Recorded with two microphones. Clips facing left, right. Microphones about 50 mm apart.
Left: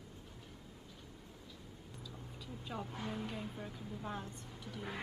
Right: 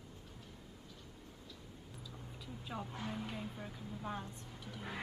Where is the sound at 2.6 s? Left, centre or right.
Centre.